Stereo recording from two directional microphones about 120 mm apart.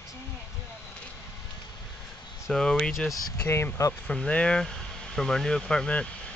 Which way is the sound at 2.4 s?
5° left (ahead or behind).